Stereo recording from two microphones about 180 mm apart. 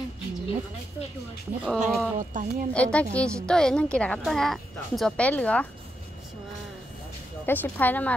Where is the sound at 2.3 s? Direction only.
45° right (ahead or behind).